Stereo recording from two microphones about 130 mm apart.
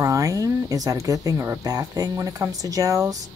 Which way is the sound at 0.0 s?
25° right (ahead or behind).